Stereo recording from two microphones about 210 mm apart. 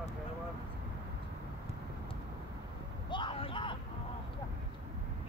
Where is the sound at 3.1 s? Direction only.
25° left (ahead or behind).